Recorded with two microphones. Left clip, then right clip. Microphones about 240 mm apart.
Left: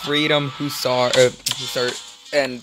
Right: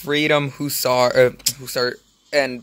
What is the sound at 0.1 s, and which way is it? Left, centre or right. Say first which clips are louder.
Speech: right 1 dB; centre.